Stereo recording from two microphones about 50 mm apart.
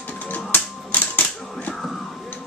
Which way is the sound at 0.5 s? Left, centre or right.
Left.